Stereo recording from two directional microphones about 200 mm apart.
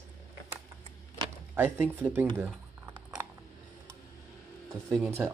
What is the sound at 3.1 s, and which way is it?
Mechanisms, 15° right (ahead or behind).